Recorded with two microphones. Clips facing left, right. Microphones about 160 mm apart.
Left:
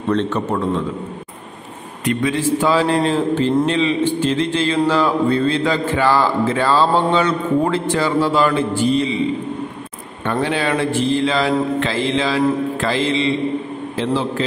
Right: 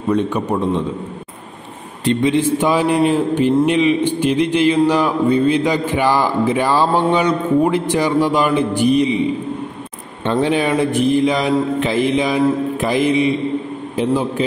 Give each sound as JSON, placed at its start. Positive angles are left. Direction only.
{"t": 0.1, "sound": "a man's voice", "side_deg": -10}
{"t": 2.0, "sound": "a man's voice", "side_deg": -20}
{"t": 10.2, "sound": "a man's voice", "side_deg": -20}